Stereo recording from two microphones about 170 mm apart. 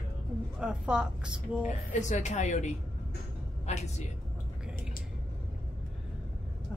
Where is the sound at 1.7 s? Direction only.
45° left (ahead or behind).